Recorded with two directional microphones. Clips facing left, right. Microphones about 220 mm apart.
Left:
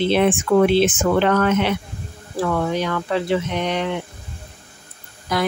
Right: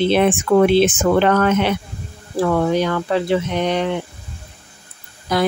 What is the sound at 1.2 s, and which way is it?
Speech, 45° right (ahead or behind).